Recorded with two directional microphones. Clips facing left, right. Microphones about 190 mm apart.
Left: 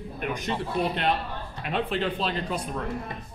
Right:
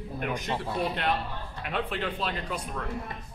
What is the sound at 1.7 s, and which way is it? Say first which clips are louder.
A man's voice: left 4 dB; 25° left (ahead or behind).